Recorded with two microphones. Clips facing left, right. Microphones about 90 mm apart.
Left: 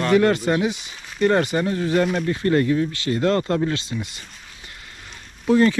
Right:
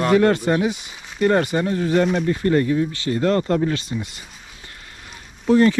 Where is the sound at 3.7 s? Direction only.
20° left (ahead or behind).